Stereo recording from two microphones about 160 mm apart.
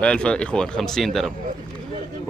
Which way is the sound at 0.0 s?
5° left (ahead or behind).